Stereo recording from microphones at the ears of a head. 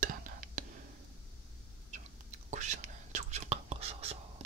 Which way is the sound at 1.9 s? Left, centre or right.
Right.